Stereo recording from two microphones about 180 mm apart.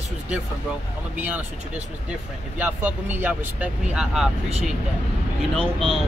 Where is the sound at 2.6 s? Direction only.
10° right (ahead or behind).